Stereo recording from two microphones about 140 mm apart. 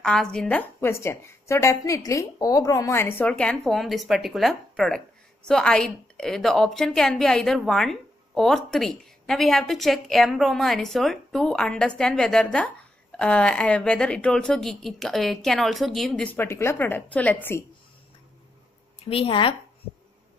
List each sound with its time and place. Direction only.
0.0 s a woman's voice: 5° left (ahead or behind)
16.3 s a woman's voice: 20° left (ahead or behind)
19.0 s speech: 40° left (ahead or behind)